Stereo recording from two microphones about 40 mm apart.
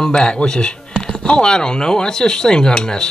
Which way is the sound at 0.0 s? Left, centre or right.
Left.